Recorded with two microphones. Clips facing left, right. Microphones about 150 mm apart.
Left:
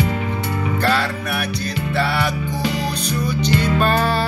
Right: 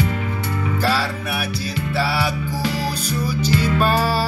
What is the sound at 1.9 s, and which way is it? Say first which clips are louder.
Music: left 1 dB; 5° right (ahead or behind).